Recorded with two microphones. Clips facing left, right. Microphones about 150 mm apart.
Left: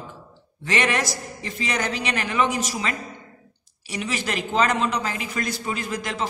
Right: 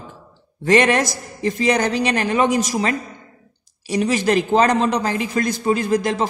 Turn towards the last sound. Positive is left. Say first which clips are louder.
# right 9 dB
turn(degrees=-40)  # may be behind; listen again after turning